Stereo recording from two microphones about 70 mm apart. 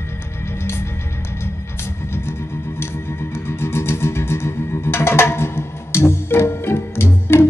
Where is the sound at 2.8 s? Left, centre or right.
Left.